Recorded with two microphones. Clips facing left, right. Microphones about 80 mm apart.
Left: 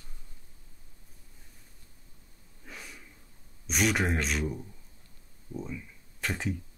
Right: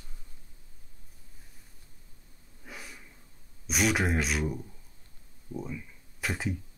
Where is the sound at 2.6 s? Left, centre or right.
Centre.